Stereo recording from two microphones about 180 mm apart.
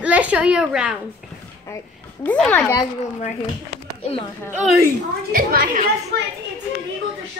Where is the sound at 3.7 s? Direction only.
65° right (ahead or behind).